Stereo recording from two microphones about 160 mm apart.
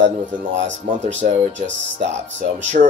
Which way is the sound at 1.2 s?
45° right (ahead or behind).